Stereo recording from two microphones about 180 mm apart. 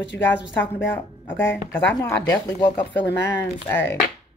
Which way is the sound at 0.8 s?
10° left (ahead or behind).